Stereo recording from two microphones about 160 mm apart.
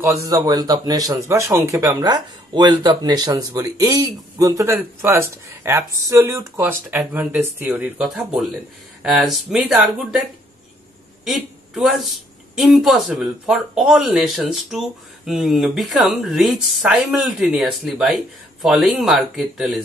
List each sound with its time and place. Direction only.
0.0 s a man's voice: 20° right (ahead or behind); by 10.2 s centre (ahead or behind)
11.2 s a woman's voice: centre (ahead or behind)